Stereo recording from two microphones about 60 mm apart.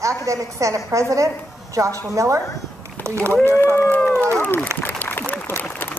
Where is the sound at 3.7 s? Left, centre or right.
Left.